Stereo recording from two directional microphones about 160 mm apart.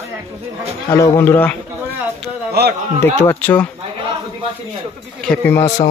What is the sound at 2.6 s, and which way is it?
Speech, 80° right.